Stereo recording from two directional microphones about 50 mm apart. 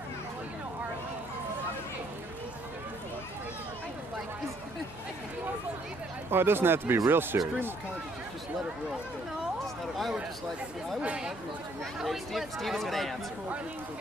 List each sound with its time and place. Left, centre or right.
6.3 s speech: right
12.0 s speech: centre